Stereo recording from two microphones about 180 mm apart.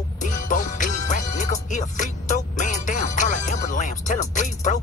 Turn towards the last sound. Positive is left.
turn(degrees=45)  # may be behind; listen again after turning